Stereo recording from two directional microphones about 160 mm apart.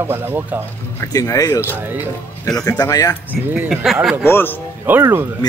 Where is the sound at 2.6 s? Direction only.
20° left (ahead or behind).